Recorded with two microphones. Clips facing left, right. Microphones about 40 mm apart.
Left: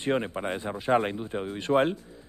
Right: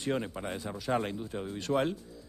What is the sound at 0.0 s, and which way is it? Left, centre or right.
Speech, left.